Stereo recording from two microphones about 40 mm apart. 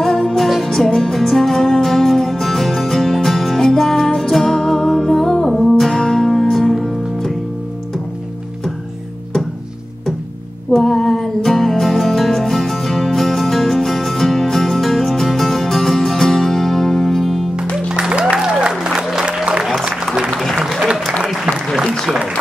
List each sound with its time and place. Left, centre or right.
0.0 s music: centre
10.7 s music: centre
17.7 s music: right
18.7 s applause: centre
19.2 s music: right
20.3 s applause: centre
21.8 s applause: centre